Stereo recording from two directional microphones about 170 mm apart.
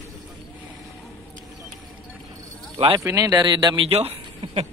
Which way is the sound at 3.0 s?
20° right (ahead or behind).